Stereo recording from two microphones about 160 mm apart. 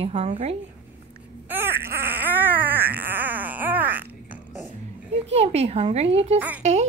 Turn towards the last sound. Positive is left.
turn(degrees=-45)  # may be behind; listen again after turning